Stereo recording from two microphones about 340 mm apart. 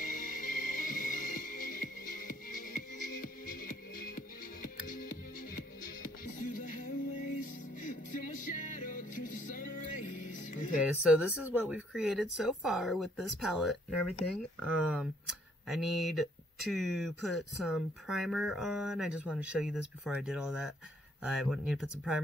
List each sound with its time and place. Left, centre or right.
0.0 s music: left
6.4 s music: left
11.1 s speech: centre